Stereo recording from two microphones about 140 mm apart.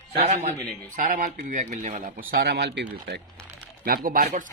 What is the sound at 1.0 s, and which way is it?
Speech, 65° right (ahead or behind).